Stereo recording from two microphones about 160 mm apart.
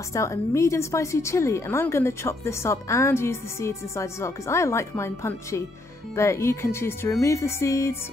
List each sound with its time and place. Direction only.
0.1 s a woman's voice: 20° left (ahead or behind)